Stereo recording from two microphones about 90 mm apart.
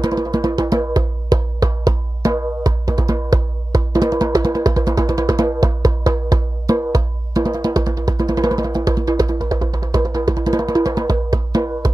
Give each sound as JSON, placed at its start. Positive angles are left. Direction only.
{"t": 0.0, "sound": "music", "side_deg": -50}